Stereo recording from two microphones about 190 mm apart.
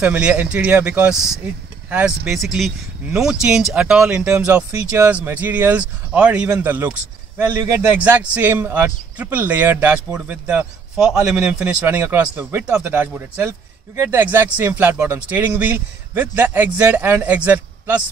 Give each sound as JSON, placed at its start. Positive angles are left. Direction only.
{"t": 0.0, "sound": "speech", "side_deg": -5}